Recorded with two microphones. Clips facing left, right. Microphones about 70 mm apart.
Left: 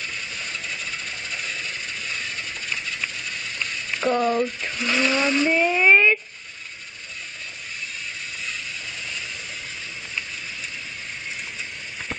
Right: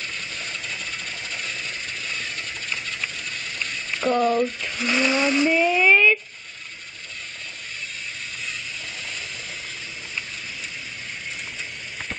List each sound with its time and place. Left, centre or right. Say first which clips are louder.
1.3 s a sound: left 1 dB; centre
4.0 s speech: right 1 dB; centre
5.0 s ratchet: right 1 dB; centre
5.5 s speech: left 2 dB; centre